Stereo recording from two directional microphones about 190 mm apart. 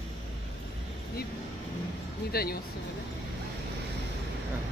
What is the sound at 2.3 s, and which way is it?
Speech, 55° left (ahead or behind).